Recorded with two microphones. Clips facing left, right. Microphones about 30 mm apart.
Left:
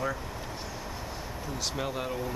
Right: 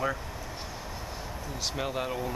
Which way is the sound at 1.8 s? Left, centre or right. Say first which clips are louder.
Right 2 dB; centre.